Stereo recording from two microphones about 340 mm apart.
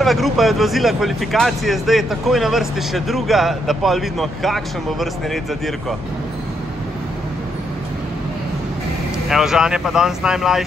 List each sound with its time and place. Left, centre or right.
0.0 s speech: centre
9.3 s speech: centre